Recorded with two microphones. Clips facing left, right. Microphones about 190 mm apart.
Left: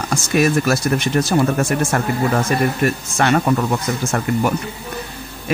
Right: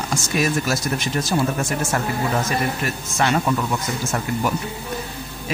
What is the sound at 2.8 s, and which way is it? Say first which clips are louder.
Speech: left 5 dB; 55° left (ahead or behind).